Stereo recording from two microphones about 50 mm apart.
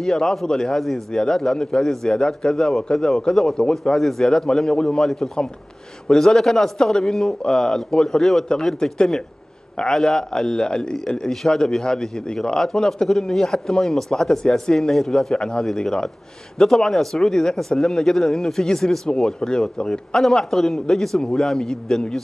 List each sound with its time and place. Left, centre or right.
0.0 s a man's voice: centre
15.3 s a man's voice: centre
20.2 s a man's voice: centre